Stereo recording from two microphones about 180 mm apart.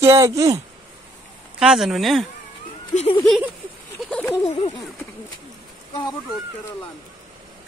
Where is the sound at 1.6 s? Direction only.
5° right (ahead or behind).